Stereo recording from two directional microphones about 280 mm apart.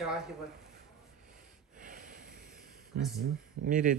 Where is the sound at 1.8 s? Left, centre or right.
Right.